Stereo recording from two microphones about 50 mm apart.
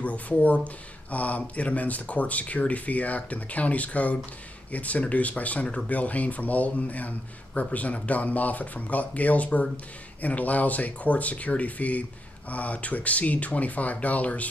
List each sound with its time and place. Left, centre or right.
0.0 s speech: left